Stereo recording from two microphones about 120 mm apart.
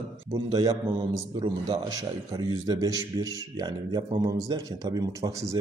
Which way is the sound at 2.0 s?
30° right (ahead or behind).